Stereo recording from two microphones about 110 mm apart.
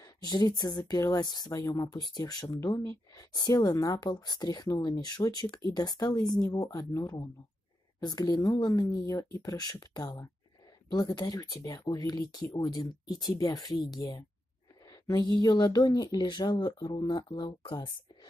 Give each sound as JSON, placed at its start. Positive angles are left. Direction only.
{"t": 0.0, "sound": "speech", "side_deg": 35}